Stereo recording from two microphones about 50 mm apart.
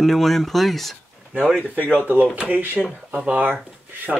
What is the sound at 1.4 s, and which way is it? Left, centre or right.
Speech, right.